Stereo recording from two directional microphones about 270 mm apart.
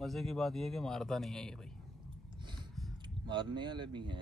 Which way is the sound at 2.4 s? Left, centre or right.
Centre.